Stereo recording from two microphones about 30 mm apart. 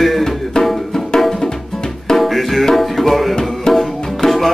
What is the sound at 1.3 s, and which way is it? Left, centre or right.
Music, left.